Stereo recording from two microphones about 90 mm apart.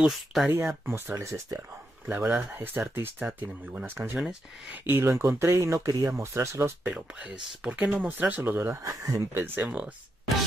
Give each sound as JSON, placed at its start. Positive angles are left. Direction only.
{"t": 0.0, "sound": "speech", "side_deg": -5}
{"t": 0.5, "sound": "speech", "side_deg": -25}
{"t": 2.0, "sound": "speech", "side_deg": -15}
{"t": 6.8, "sound": "speech", "side_deg": -15}
{"t": 8.8, "sound": "speech", "side_deg": -40}
{"t": 9.3, "sound": "speech", "side_deg": -25}